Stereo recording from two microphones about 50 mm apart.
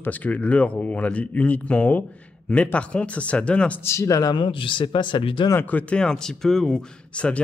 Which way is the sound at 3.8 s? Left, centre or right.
Left.